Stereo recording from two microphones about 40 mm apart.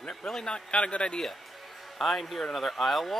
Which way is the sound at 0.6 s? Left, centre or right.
Left.